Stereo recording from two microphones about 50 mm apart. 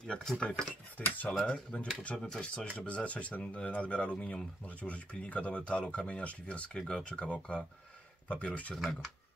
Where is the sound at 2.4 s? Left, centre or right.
Left.